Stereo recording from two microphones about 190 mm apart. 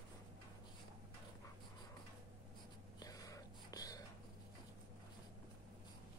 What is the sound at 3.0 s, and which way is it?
Whispering, 20° left (ahead or behind).